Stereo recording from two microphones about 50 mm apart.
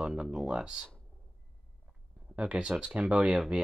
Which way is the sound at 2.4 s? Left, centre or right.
Right.